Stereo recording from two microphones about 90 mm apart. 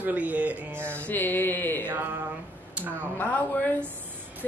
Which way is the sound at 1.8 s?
25° right (ahead or behind).